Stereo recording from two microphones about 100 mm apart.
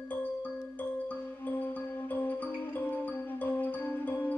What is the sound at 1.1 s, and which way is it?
Music, 15° left (ahead or behind).